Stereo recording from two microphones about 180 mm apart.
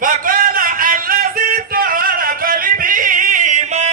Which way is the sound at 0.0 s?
50° right (ahead or behind).